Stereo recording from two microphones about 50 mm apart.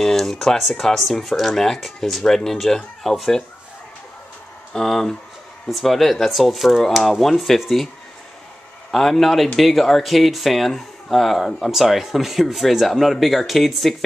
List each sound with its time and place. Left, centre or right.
0.0 s speech: centre
4.7 s speech: centre
8.9 s speech: centre